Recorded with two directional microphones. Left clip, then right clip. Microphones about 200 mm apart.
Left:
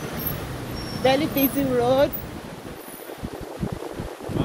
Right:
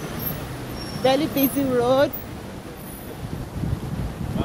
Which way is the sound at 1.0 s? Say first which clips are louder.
Even; 20° right (ahead or behind).